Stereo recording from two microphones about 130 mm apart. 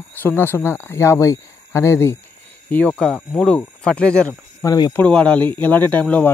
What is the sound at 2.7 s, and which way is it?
Speech, 10° left (ahead or behind).